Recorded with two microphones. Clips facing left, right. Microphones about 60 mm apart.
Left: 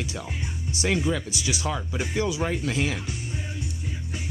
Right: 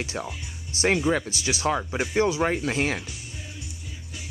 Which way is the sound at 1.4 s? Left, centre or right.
Right.